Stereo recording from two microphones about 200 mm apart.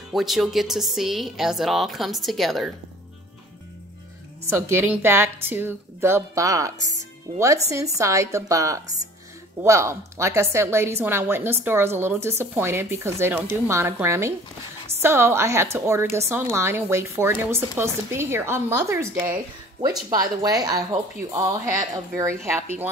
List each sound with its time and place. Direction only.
0.1 s speech: centre (ahead or behind)
4.5 s a woman's voice: 10° right (ahead or behind)
21.9 s a woman's voice: 15° right (ahead or behind)